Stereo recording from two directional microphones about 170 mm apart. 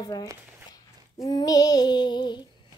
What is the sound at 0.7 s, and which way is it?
Female singing, 25° left (ahead or behind).